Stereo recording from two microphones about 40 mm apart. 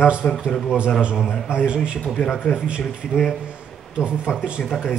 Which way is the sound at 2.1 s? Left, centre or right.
Centre.